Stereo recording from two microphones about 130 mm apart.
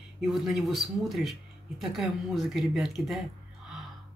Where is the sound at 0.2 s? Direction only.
Centre (ahead or behind).